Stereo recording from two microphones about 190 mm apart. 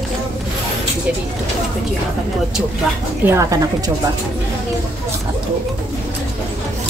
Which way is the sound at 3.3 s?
15° right (ahead or behind).